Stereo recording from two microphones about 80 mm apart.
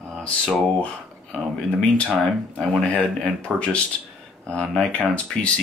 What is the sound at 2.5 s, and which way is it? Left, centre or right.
Speech, centre.